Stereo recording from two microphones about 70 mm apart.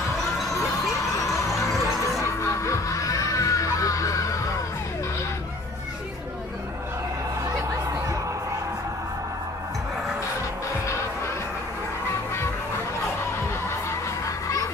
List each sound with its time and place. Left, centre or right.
1.1 s music: left
10.9 s music: left
13.4 s music: left